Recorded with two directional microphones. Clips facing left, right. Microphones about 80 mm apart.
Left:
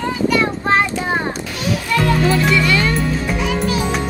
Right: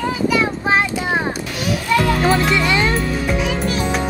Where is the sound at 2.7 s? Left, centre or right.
Right.